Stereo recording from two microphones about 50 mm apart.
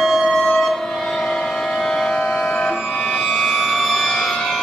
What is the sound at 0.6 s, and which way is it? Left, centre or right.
Train, centre.